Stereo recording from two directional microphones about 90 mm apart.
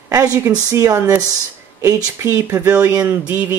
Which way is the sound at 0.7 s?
35° right (ahead or behind).